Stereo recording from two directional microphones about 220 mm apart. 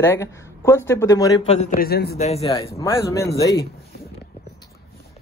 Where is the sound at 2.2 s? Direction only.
30° left (ahead or behind).